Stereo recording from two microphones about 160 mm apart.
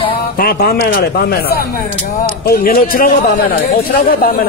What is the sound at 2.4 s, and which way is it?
Speech, 65° left (ahead or behind).